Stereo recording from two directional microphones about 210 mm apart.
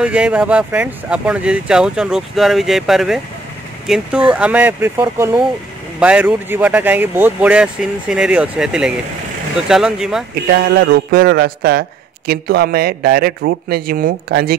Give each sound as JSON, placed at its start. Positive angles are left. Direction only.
{"t": 0.0, "sound": "speech", "side_deg": -5}
{"t": 10.5, "sound": "a man's voice", "side_deg": -55}